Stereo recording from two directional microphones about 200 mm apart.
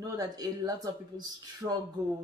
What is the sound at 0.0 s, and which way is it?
Speech, 15° right (ahead or behind).